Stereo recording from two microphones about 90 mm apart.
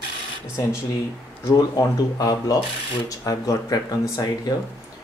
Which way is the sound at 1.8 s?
45° left (ahead or behind).